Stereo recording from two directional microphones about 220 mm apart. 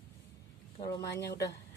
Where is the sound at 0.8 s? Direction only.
15° left (ahead or behind).